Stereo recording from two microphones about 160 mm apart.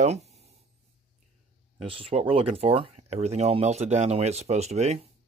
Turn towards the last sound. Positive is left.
turn(degrees=-45)  # may be behind; listen again after turning